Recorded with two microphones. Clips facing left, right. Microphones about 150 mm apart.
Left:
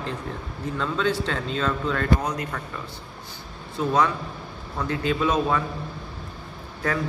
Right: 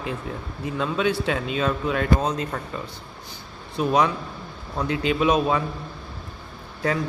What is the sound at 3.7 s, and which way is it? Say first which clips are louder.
Speech: right 1 dB; 15° right (ahead or behind).